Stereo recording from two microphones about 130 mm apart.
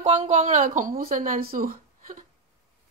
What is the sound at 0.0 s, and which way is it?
A woman's voice, 60° right (ahead or behind).